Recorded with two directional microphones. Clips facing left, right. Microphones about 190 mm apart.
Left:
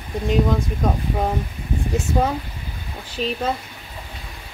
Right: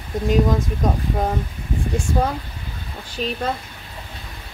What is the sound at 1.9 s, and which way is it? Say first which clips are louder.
Speech: left 1 dB; 5° left (ahead or behind).